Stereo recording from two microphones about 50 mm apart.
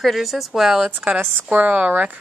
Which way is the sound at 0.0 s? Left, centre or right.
Centre.